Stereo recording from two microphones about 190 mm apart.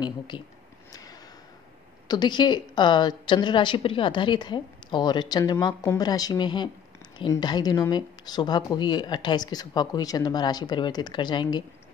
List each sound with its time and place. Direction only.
0.3 s a woman's voice: 25° left (ahead or behind)
2.0 s a woman's voice: 20° left (ahead or behind)